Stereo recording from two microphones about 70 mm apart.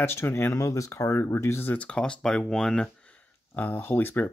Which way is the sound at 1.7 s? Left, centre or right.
Centre.